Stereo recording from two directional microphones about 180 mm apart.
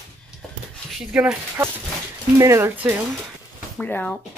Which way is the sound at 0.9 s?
5° right (ahead or behind).